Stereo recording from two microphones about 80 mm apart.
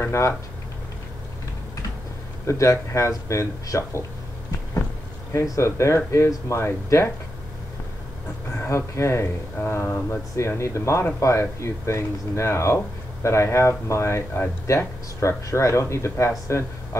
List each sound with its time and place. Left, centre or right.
0.0 s speech: left
2.4 s speech: left
5.3 s speech: left
8.5 s speech: left
9.6 s speech: left
10.3 s speech: left